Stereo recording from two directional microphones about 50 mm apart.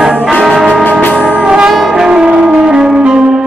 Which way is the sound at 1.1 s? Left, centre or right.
Right.